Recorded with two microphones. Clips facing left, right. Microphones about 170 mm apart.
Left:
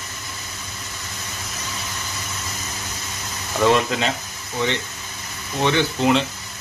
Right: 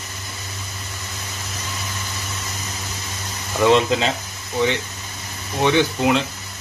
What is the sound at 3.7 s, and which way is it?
Speech, 25° right (ahead or behind).